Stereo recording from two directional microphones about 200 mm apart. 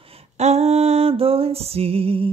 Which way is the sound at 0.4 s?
30° right (ahead or behind).